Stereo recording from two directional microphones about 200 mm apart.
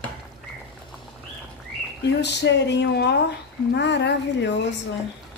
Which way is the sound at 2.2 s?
60° left (ahead or behind).